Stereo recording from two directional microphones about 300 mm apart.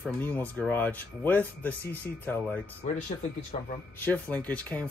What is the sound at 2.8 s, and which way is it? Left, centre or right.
Speech, left.